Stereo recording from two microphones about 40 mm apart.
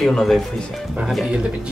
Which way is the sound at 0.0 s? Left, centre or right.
Centre.